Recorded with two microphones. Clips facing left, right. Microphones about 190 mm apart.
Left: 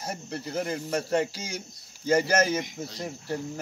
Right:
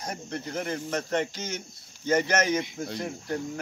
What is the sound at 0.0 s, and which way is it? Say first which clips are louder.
Speech: even; 5° left (ahead or behind).